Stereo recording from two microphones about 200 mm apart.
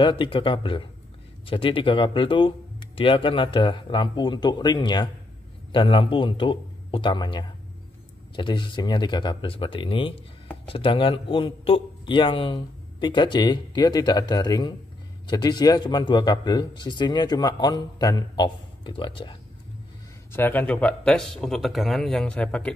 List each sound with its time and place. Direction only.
0.0 s speech: 25° left (ahead or behind)
20.3 s speech: 10° left (ahead or behind)